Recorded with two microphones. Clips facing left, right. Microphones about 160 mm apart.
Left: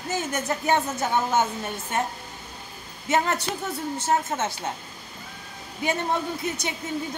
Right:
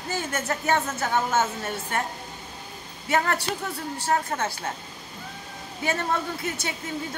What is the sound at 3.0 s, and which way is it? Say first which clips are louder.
Speech: left 1 dB; 20° left (ahead or behind).